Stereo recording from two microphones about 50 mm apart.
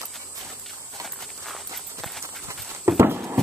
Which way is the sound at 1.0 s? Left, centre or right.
Centre.